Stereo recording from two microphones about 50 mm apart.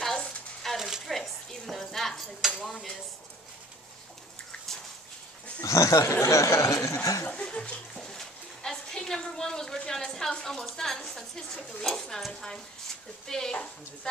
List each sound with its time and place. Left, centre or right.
0.7 s a sound: centre
1.0 s speech: centre
5.7 s speech: left
7.2 s speech: left
7.9 s a woman's voice: centre